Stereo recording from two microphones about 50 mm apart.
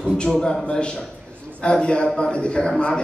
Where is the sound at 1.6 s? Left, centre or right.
Centre.